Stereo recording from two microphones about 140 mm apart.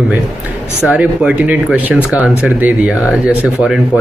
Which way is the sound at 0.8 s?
5° right (ahead or behind).